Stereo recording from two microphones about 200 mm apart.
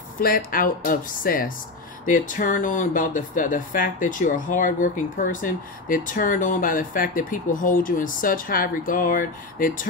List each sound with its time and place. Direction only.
0.2 s speech: 45° left (ahead or behind)